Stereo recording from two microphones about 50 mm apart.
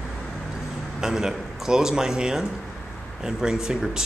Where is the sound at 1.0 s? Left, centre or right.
Centre.